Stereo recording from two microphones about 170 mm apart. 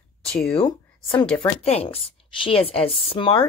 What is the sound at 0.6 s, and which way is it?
A woman's voice, 35° left (ahead or behind).